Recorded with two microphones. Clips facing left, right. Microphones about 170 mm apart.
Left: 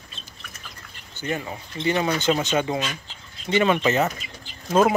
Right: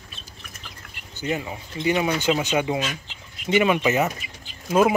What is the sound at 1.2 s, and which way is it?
Speech, 15° right (ahead or behind).